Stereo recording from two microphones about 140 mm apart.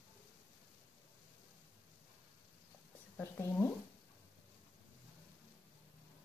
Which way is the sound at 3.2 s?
20° left (ahead or behind).